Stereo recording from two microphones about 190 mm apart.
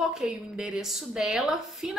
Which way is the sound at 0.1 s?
Centre (ahead or behind).